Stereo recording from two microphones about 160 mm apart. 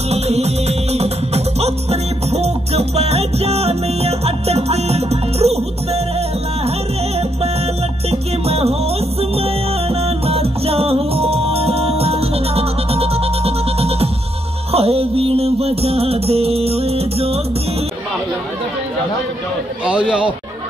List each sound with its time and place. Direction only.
0.1 s music: 40° right (ahead or behind)
8.1 s music: 40° right (ahead or behind)
19.8 s a man's voice: 5° right (ahead or behind)